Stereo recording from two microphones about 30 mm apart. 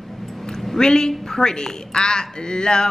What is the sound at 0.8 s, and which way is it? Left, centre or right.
A woman's voice, left.